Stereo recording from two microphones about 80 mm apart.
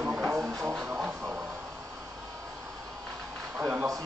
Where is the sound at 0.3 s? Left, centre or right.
Right.